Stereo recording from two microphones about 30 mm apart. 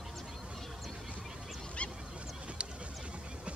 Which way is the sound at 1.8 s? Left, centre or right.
Left.